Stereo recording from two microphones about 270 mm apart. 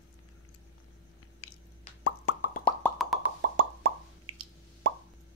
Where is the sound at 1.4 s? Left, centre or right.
Left.